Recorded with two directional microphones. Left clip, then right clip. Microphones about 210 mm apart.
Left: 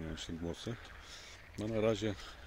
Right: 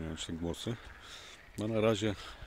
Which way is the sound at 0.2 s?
30° right (ahead or behind).